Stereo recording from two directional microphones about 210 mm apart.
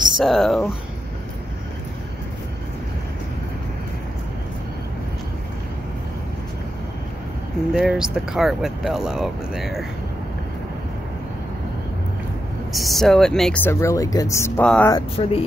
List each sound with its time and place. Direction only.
0.2 s speech: centre (ahead or behind)
7.7 s speech: 5° right (ahead or behind)
12.7 s speech: centre (ahead or behind)
14.9 s speech: 25° left (ahead or behind)